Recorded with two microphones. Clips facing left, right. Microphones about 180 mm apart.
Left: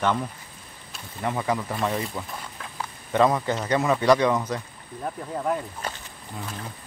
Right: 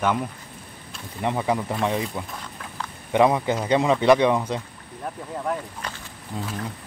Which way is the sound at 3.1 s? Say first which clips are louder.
Right 2 dB; 15° right (ahead or behind).